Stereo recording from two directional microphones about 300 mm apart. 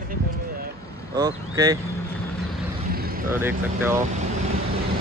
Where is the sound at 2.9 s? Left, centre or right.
Right.